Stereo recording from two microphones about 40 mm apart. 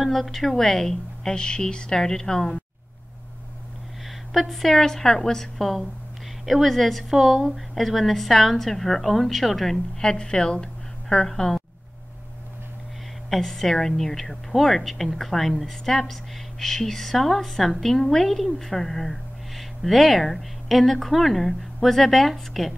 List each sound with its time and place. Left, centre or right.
0.0 s a woman's voice: centre
4.3 s a woman's voice: centre; by 11.2 s left
11.2 s a woman's voice: centre
13.3 s a woman's voice: centre